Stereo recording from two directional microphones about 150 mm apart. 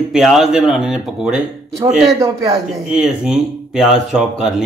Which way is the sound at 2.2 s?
20° right (ahead or behind).